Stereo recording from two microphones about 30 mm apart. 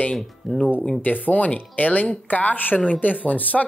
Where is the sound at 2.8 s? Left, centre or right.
Left.